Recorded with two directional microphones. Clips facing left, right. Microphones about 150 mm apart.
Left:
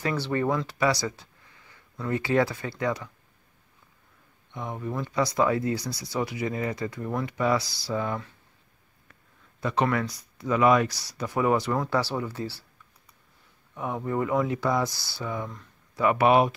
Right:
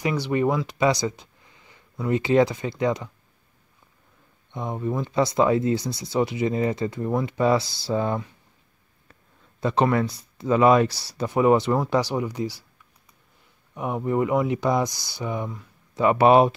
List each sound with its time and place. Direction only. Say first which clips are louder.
0.0 s speech: right 4 dB; 15° right (ahead or behind)
4.6 s speech: right 5 dB; 25° right (ahead or behind)
9.6 s speech: right 4 dB; 30° right (ahead or behind)
13.7 s speech: right 4 dB; 15° right (ahead or behind)